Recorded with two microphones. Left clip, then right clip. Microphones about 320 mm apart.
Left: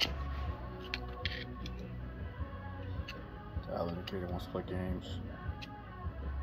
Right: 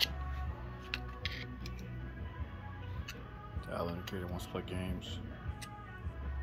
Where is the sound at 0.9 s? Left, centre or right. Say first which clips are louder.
Left 1 dB; right.